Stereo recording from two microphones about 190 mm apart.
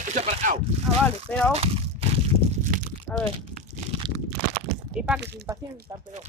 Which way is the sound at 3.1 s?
5° left (ahead or behind).